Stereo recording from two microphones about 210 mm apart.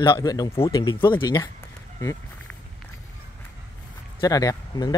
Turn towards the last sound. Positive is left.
turn(degrees=20)  # may be behind; listen again after turning